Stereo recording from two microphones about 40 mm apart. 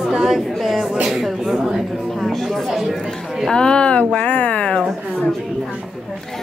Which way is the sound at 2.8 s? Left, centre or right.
Centre.